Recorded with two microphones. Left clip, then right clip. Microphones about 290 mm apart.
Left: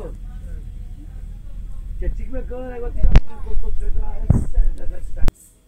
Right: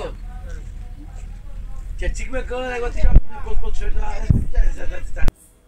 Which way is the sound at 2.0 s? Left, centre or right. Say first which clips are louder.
Right 6 dB; right.